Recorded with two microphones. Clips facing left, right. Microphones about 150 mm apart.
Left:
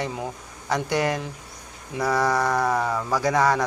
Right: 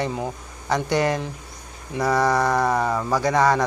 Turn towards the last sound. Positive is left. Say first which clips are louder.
# right 2 dB
turn(degrees=5)  # may be behind; listen again after turning